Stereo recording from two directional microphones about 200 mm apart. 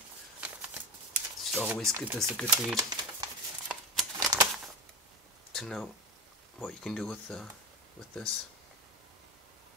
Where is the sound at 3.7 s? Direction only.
Centre (ahead or behind).